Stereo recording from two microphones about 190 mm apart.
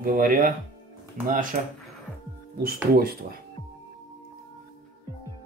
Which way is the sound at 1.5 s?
40° right (ahead or behind).